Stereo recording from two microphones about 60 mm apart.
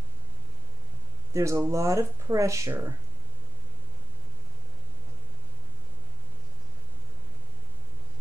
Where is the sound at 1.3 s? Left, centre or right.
Right.